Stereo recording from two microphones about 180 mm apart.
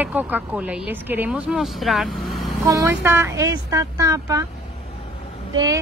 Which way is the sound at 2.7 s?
15° right (ahead or behind).